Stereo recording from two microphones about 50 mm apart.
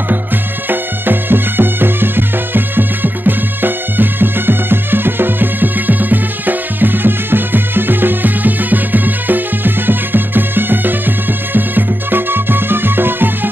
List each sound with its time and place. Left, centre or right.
0.7 s music: right